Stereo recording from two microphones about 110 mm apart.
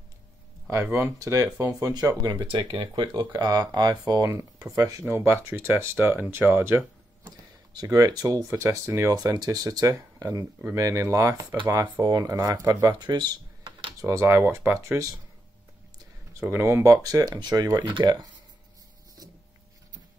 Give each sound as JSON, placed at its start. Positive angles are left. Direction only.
{"t": 0.8, "sound": "speech", "side_deg": -20}
{"t": 2.5, "sound": "speech", "side_deg": -50}
{"t": 7.2, "sound": "speech", "side_deg": -35}
{"t": 9.1, "sound": "speech", "side_deg": -35}
{"t": 14.0, "sound": "speech", "side_deg": -25}
{"t": 16.3, "sound": "speech", "side_deg": -20}